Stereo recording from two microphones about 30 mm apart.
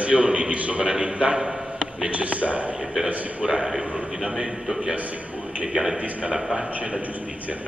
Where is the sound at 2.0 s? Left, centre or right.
Right.